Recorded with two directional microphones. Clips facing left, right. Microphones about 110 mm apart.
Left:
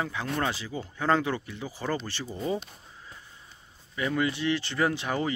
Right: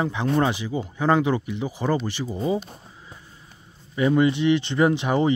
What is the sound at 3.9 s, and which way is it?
Speech, 25° right (ahead or behind).